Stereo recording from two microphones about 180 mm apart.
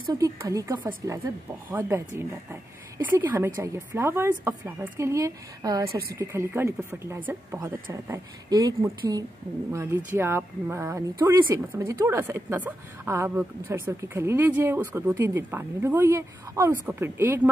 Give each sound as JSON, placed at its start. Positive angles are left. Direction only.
{"t": 0.2, "sound": "a woman's voice", "side_deg": -15}